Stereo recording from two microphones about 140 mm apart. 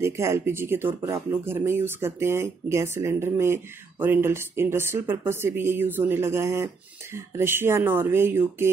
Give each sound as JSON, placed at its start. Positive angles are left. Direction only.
{"t": 0.0, "sound": "speech", "side_deg": -20}